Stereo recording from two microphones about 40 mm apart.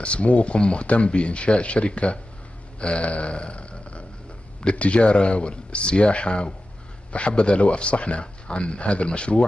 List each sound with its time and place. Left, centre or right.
0.0 s speech: left
2.8 s a sound: left
4.6 s speech: left